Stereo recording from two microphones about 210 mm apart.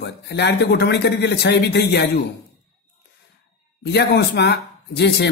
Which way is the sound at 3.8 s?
50° left (ahead or behind).